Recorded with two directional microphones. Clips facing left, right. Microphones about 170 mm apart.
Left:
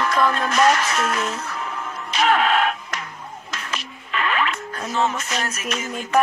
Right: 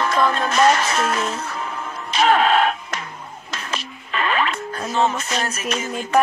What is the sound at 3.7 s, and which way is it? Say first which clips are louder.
Speech: right 1 dB; 30° right (ahead or behind).